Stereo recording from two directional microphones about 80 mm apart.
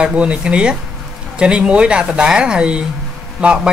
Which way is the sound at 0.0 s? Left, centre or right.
Centre.